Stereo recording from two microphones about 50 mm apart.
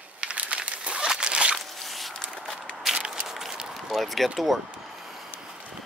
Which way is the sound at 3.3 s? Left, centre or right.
Centre.